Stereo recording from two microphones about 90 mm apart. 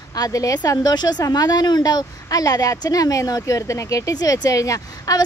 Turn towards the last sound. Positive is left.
turn(degrees=40)  # may be behind; listen again after turning